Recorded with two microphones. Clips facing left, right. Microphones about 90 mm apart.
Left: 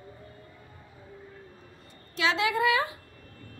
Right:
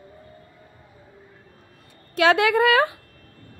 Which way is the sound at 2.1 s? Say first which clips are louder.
Right 9 dB; 60° right (ahead or behind).